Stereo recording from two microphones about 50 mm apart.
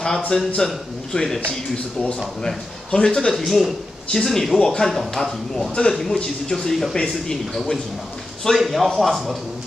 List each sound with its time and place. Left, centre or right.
0.0 s a man's voice: centre
2.4 s speech: centre
8.5 s a man's voice: centre